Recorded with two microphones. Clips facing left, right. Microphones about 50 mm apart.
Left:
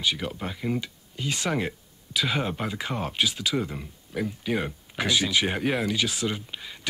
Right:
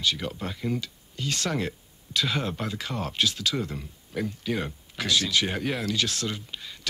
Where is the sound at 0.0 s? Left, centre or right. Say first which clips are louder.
Even; centre.